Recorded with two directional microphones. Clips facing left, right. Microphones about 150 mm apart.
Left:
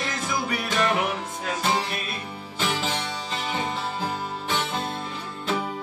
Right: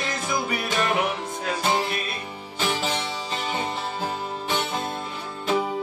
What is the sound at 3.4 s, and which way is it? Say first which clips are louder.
Music: even; centre (ahead or behind).